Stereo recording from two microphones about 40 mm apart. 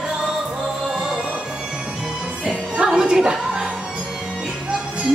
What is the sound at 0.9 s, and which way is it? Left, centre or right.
Music, centre.